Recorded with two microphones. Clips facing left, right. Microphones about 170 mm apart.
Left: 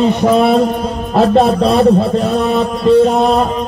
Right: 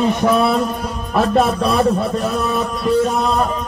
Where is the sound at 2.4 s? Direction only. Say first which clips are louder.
Left 7 dB; 25° left (ahead or behind).